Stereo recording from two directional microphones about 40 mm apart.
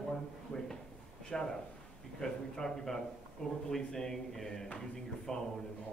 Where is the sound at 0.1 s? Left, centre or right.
Centre.